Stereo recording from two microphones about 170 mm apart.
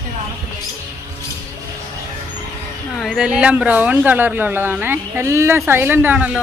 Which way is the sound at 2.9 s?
Centre (ahead or behind).